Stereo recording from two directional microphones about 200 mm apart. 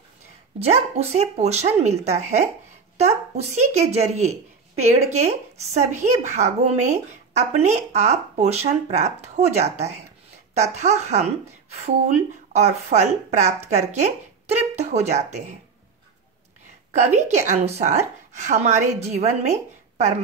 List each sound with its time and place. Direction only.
0.6 s a woman's voice: 30° right (ahead or behind)
16.9 s a woman's voice: 35° right (ahead or behind)